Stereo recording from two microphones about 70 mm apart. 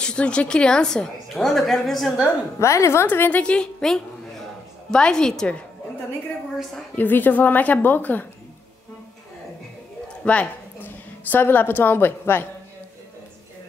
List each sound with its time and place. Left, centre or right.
0.0 s a woman's voice: centre
2.6 s a woman's voice: left
3.1 s a woman's voice: left; by 5.6 s centre
7.0 s speech: left
10.2 s a woman's voice: centre